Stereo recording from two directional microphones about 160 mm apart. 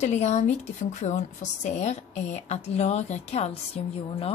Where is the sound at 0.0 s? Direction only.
45° left (ahead or behind).